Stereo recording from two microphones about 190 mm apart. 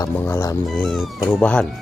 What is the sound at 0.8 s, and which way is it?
Speech, centre (ahead or behind).